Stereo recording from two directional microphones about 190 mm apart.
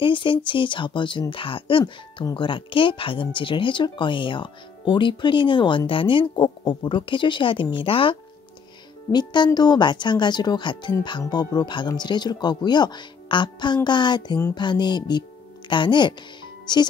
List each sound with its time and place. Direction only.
0.0 s speech: 25° left (ahead or behind)